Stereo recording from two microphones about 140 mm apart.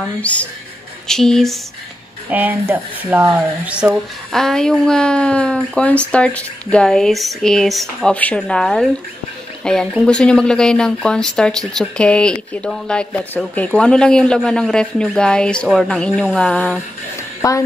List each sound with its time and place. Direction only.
0.2 s speech: 10° left (ahead or behind)
2.2 s speech: 10° right (ahead or behind)
4.3 s speech: 5° left (ahead or behind)
17.4 s a woman's voice: 20° left (ahead or behind)